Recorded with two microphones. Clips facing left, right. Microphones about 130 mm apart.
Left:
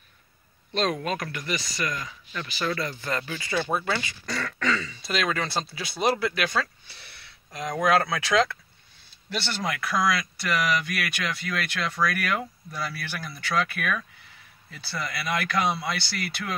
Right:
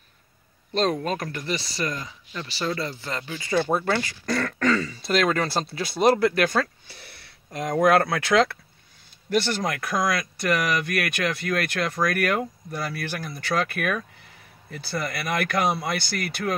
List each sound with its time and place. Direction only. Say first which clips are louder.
0.7 s speech: right 3 dB; 35° right (ahead or behind); by 8.5 s 60° right (ahead or behind)
9.3 s speech: right 6 dB; 45° right (ahead or behind)